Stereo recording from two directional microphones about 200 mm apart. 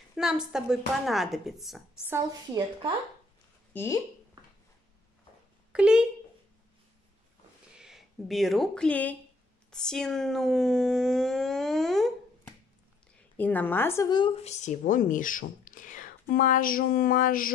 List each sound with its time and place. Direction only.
0.1 s speech: 5° right (ahead or behind)
3.7 s speech: 10° left (ahead or behind)
5.7 s speech: 5° right (ahead or behind)
7.7 s speech: centre (ahead or behind)
13.4 s speech: 10° left (ahead or behind); by 17.5 s 45° left (ahead or behind)